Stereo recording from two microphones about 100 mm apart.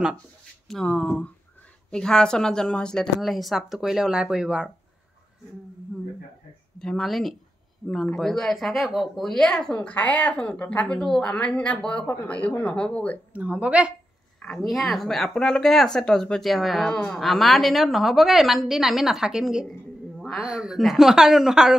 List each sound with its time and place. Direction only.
0.7 s speech: 5° left (ahead or behind)
6.8 s speech: 5° left (ahead or behind)
13.3 s a woman's voice: 15° right (ahead or behind)
14.4 s speech: 5° left (ahead or behind)
20.2 s a sound: centre (ahead or behind)
20.4 s speech: 5° right (ahead or behind)